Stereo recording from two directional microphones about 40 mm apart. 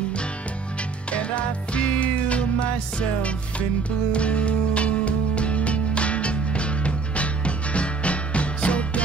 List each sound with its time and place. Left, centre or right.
1.1 s music: left